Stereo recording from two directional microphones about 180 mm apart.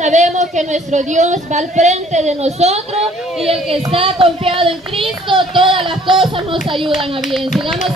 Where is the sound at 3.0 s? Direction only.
Centre (ahead or behind).